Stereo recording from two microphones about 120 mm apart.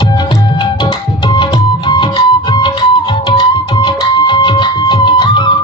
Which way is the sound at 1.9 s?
35° left (ahead or behind).